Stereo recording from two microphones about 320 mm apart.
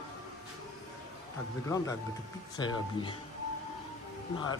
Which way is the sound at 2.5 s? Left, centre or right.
Centre.